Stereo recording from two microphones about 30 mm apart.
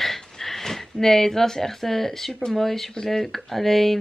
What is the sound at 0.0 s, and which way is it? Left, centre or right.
Speech, centre.